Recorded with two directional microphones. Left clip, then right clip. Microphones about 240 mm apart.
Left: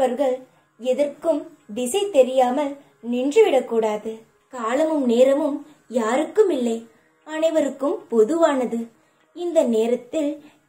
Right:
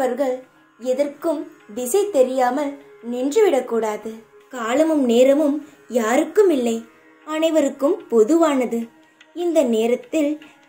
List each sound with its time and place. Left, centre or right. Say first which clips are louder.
0.2 s a woman's voice: even; centre